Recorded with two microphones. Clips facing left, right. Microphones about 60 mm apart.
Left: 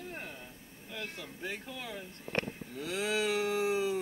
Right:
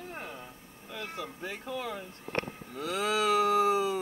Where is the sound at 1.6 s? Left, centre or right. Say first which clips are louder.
Right 6 dB; right.